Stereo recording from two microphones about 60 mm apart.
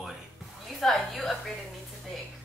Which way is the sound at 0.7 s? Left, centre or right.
Centre.